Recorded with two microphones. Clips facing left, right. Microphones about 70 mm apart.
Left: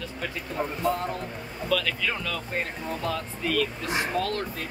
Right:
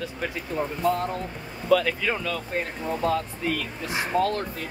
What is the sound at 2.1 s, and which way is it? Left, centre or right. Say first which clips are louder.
Speech: right 3 dB; centre.